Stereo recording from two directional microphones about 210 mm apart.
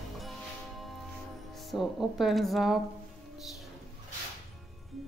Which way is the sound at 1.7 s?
Centre (ahead or behind).